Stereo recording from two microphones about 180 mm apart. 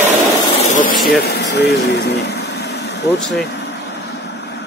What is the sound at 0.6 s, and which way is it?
Speech, 45° left (ahead or behind).